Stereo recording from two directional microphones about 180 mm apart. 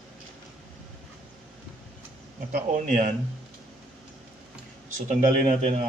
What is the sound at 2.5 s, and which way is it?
Speech, 45° right (ahead or behind).